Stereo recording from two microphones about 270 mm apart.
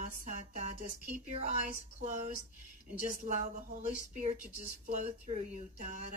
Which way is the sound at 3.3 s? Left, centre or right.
Right.